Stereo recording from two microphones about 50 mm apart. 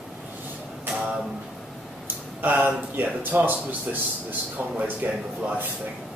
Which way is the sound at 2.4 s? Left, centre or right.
Right.